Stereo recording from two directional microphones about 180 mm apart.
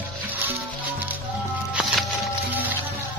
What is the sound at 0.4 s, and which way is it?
Music, 10° right (ahead or behind).